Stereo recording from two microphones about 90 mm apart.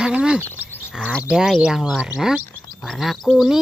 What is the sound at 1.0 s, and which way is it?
Speech, 10° left (ahead or behind).